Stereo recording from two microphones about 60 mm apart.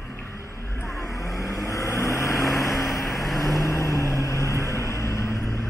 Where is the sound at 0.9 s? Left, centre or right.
Left.